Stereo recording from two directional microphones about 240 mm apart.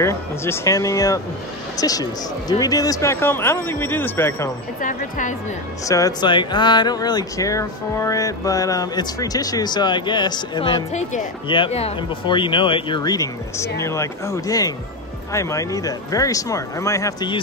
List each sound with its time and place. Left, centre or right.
0.0 s speech: centre
4.8 s speech: left
5.9 s speech: centre